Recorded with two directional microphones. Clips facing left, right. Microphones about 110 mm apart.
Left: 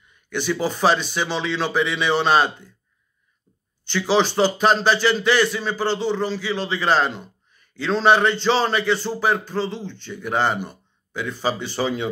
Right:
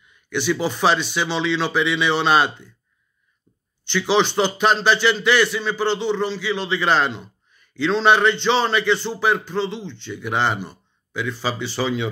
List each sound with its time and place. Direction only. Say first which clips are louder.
0.0 s speech: right 2 dB; 40° left (ahead or behind)
4.1 s speech: left 1 dB; 40° left (ahead or behind)